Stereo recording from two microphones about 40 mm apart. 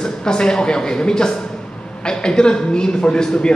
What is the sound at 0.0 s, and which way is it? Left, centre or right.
A man's voice, centre.